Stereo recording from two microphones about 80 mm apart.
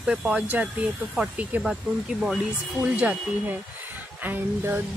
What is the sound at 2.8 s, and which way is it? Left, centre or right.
Speech, centre.